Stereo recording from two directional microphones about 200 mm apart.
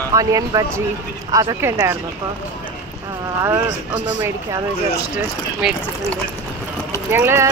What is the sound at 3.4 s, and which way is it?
Speech, 10° right (ahead or behind).